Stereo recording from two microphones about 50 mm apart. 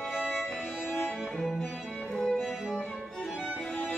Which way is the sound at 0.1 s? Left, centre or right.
Centre.